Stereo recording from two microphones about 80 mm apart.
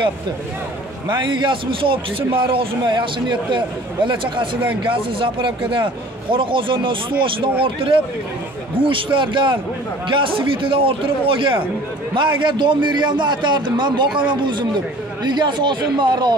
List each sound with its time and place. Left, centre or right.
1.0 s a man's voice: right
8.7 s a man's voice: right
15.2 s a man's voice: right